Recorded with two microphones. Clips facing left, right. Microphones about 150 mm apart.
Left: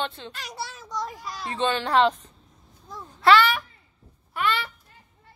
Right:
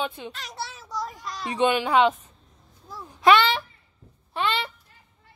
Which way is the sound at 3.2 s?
15° right (ahead or behind).